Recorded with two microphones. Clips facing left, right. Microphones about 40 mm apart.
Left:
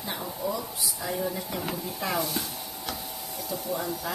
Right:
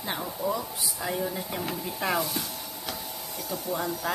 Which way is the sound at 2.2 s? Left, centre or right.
Centre.